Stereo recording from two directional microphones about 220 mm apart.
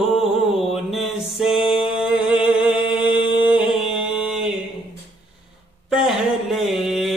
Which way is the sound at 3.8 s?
Centre (ahead or behind).